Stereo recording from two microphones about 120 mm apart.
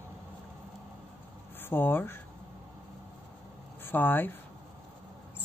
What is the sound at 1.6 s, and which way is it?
Speech, 15° left (ahead or behind).